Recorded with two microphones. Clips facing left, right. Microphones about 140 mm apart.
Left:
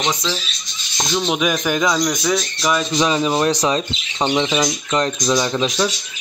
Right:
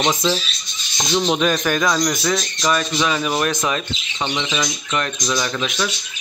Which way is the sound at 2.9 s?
20° left (ahead or behind).